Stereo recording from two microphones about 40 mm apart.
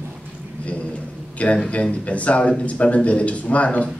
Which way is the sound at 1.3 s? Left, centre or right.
Left.